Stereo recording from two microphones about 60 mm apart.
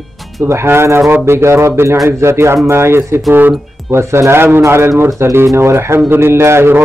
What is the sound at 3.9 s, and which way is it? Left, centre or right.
Speech, right.